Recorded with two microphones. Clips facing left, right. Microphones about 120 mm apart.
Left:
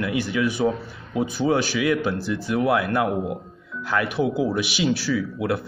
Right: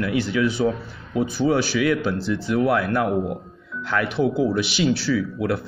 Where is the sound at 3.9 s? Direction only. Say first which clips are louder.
Right 1 dB; 15° left (ahead or behind).